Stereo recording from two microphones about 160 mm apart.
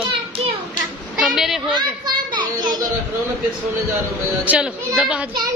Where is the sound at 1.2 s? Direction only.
5° right (ahead or behind).